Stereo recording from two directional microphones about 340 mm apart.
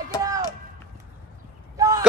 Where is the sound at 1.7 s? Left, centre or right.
Centre.